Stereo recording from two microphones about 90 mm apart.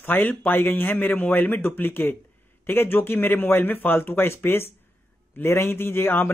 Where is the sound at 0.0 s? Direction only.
20° left (ahead or behind).